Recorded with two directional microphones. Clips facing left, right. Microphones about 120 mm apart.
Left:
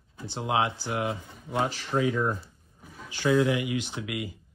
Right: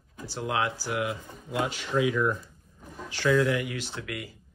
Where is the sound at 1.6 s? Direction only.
40° left (ahead or behind).